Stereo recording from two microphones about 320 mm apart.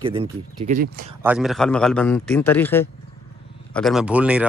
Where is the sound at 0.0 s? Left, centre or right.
Centre.